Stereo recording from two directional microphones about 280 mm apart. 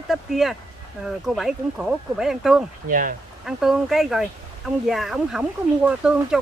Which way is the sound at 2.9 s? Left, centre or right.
Right.